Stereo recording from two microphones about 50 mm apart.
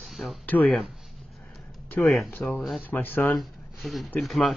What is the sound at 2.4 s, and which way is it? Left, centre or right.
Speech, centre.